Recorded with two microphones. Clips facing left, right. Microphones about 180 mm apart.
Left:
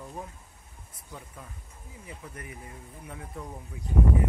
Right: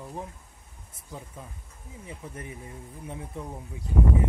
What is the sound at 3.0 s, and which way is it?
Speech, 25° right (ahead or behind).